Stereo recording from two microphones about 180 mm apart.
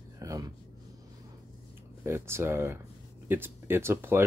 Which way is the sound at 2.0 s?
15° right (ahead or behind).